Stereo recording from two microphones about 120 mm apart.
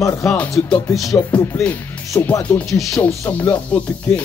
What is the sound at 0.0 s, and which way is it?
Music, 25° left (ahead or behind).